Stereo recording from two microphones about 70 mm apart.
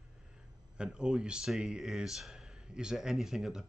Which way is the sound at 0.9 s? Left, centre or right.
Centre.